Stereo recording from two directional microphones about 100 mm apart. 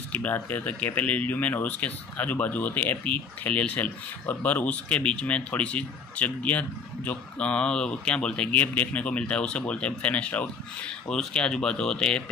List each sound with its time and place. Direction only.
0.1 s speech: 15° left (ahead or behind)